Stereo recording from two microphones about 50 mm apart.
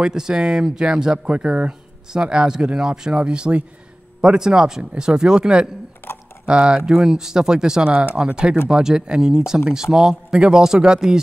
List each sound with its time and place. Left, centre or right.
0.0 s speech: centre
6.0 s a sound: left
6.4 s speech: centre